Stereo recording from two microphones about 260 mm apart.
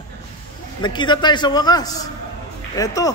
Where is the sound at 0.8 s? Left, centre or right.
Centre.